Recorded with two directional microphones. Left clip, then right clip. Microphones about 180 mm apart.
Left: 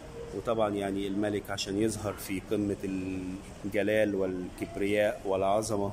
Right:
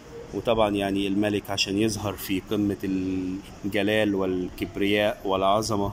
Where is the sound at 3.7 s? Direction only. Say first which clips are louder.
Right 4 dB; centre (ahead or behind).